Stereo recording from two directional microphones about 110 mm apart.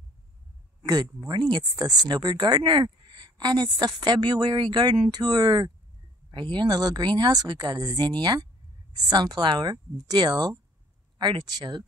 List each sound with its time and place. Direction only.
1.3 s speech: 40° right (ahead or behind)